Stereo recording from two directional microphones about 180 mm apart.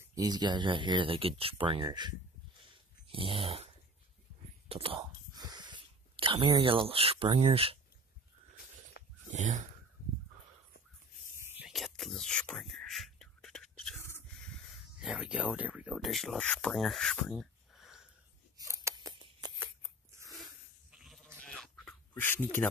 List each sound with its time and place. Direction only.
0.1 s speech: 20° right (ahead or behind)
3.1 s dog: 30° right (ahead or behind)
4.6 s speech: 30° right (ahead or behind)
9.0 s a sound: 60° left (ahead or behind)
9.3 s speech: 45° right (ahead or behind)
11.4 s a sound: 10° right (ahead or behind)
11.7 s whispering: centre (ahead or behind)
15.0 s speech: centre (ahead or behind)
18.6 s scissors: 15° right (ahead or behind)
20.2 s a sound: 20° right (ahead or behind)
20.9 s sheep: centre (ahead or behind)
21.5 s duck: 5° left (ahead or behind)